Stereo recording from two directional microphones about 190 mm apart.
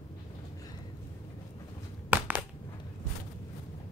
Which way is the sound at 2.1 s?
10° right (ahead or behind).